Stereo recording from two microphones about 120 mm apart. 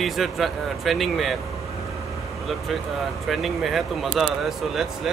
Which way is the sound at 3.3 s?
Centre (ahead or behind).